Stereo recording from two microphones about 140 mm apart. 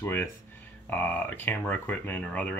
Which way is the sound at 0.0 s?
15° left (ahead or behind).